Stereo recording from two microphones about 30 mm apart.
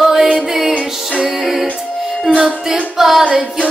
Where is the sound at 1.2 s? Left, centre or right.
Centre.